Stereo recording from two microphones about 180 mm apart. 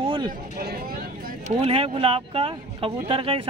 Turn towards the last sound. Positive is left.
turn(degrees=-30)  # may be behind; listen again after turning